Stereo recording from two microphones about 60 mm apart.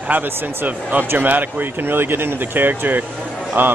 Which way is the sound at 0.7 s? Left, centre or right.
Right.